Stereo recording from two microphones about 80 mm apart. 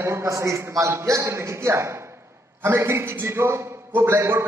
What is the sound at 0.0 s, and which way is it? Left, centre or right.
A man's voice, right.